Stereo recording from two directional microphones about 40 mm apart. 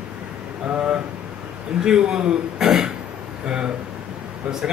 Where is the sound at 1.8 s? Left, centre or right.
Centre.